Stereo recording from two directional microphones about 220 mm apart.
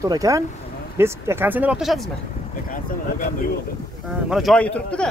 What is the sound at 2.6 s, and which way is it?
Speech, 40° left (ahead or behind).